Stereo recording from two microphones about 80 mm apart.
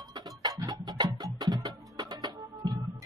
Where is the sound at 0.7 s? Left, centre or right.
Right.